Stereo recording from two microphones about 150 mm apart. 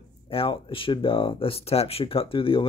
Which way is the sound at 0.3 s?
35° left (ahead or behind).